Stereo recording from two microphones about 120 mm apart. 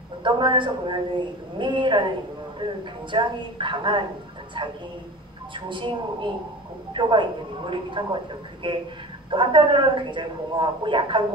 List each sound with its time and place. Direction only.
0.2 s a man's voice: 40° right (ahead or behind)